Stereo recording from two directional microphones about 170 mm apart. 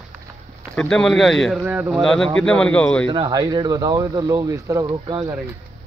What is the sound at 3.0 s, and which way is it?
Speech, 25° right (ahead or behind).